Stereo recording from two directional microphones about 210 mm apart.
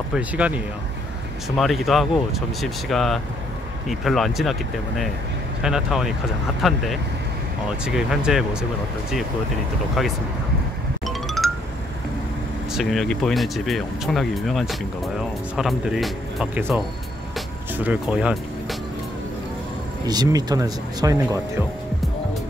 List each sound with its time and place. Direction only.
0.1 s speech: 5° right (ahead or behind)
1.6 s speech: centre (ahead or behind)
7.8 s speech: 5° right (ahead or behind)
11.1 s music: centre (ahead or behind)
12.7 s speech: centre (ahead or behind)
20.1 s speech: 20° right (ahead or behind)